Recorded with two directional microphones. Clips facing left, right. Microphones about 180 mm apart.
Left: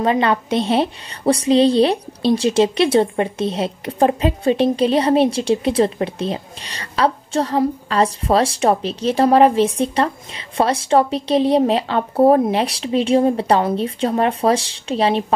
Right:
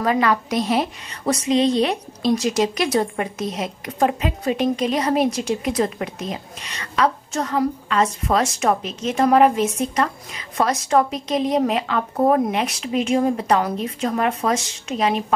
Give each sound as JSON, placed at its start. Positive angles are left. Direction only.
{"t": 0.0, "sound": "a woman's voice", "side_deg": 25}